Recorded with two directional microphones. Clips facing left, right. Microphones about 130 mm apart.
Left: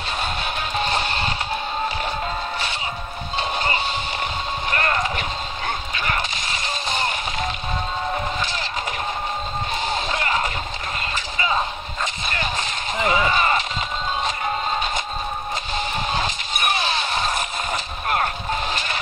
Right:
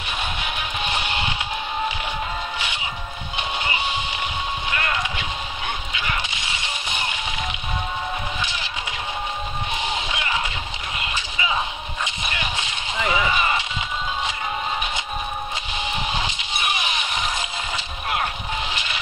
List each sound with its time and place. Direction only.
0.4 s music: 15° right (ahead or behind)
3.3 s music: 20° right (ahead or behind)
4.6 s a sound: 45° left (ahead or behind)
6.2 s music: 20° right (ahead or behind)
9.8 s music: 15° right (ahead or behind)
10.1 s music: 45° left (ahead or behind)
12.6 s a sound: 20° right (ahead or behind)
15.7 s music: 15° right (ahead or behind)
16.7 s a sound: 15° right (ahead or behind)
18.0 s music: 45° left (ahead or behind)